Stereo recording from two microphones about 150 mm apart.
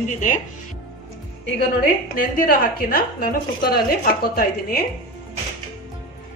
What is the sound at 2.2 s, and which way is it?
A woman's voice, 70° left (ahead or behind).